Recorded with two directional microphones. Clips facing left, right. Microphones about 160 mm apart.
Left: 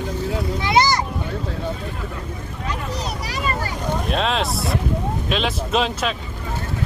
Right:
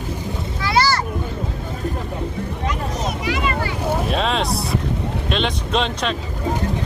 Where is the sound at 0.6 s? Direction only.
20° left (ahead or behind).